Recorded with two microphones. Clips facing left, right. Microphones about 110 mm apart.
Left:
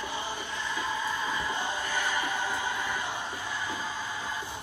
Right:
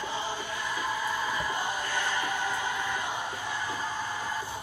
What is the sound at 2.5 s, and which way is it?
Music, 15° right (ahead or behind).